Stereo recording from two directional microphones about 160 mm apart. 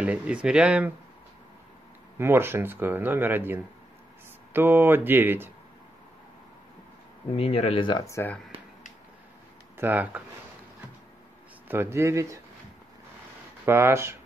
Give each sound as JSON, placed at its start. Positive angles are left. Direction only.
{"t": 0.0, "sound": "speech", "side_deg": -5}
{"t": 2.1, "sound": "speech", "side_deg": -15}
{"t": 7.3, "sound": "speech", "side_deg": 40}
{"t": 9.8, "sound": "speech", "side_deg": -10}
{"t": 11.6, "sound": "speech", "side_deg": -15}
{"t": 13.7, "sound": "speech", "side_deg": -15}